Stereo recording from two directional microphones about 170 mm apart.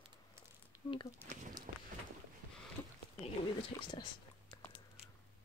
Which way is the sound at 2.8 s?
10° left (ahead or behind).